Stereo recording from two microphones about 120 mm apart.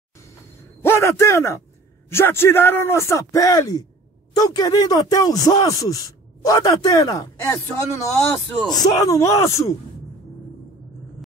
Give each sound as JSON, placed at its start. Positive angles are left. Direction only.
{"t": 0.8, "sound": "a man's voice", "side_deg": 20}